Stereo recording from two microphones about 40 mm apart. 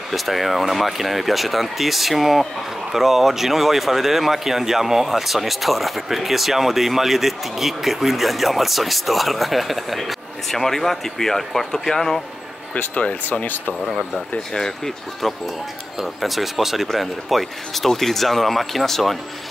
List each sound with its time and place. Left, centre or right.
0.1 s speech: centre
12.7 s speech: left
16.0 s speech: centre